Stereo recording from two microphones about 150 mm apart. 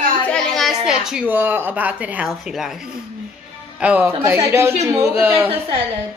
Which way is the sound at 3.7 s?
10° right (ahead or behind).